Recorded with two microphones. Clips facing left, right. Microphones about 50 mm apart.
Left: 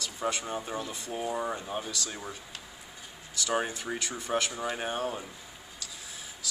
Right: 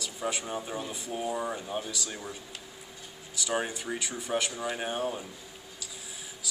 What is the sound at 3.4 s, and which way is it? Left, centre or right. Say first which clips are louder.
Speech: left 1 dB; centre.